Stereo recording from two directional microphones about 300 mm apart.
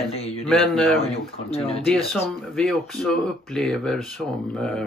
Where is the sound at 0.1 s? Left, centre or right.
Centre.